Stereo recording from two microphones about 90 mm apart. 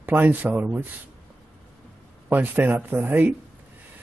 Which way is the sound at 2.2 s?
20° right (ahead or behind).